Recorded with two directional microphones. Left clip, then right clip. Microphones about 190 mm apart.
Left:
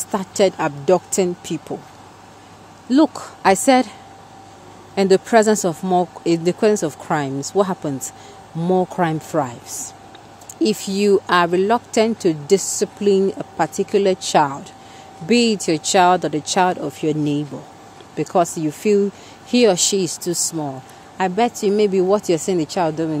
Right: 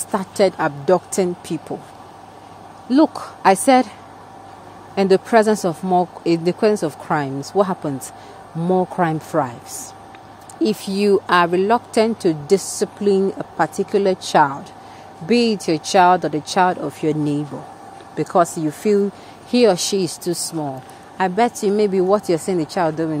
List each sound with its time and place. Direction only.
0.1 s speech: 5° left (ahead or behind)
2.9 s speech: 5° left (ahead or behind)
4.9 s speech: 5° left (ahead or behind)